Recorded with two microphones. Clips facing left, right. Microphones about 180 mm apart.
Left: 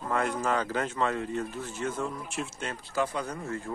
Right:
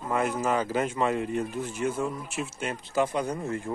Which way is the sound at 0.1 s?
5° right (ahead or behind).